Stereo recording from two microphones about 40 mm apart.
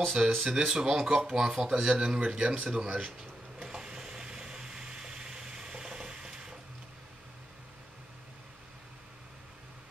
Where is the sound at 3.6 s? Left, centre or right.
Centre.